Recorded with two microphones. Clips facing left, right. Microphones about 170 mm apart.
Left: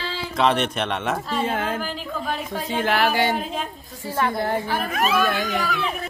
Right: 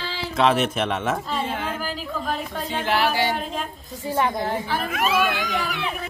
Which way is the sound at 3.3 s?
Centre (ahead or behind).